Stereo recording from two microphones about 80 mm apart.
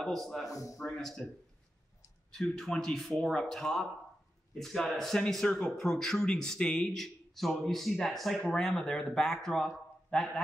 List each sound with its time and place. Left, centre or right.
0.0 s speech: centre
0.5 s speech: left
0.7 s speech: centre
2.3 s speech: centre